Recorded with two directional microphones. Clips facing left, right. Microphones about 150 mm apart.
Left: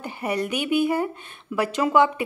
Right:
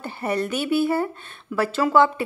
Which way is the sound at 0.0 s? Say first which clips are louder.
Right 1 dB; 10° left (ahead or behind).